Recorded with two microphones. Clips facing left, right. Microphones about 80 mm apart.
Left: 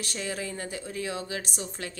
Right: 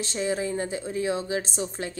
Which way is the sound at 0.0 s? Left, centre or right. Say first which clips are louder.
Right 7 dB; right.